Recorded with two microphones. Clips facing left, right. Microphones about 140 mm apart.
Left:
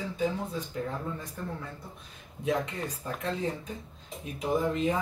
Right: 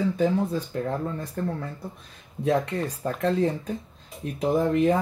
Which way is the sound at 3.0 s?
60° right (ahead or behind).